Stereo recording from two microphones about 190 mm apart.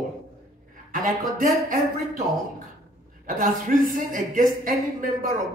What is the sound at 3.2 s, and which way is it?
Speech, 45° right (ahead or behind).